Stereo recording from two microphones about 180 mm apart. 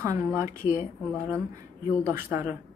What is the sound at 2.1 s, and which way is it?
Speech, 15° right (ahead or behind).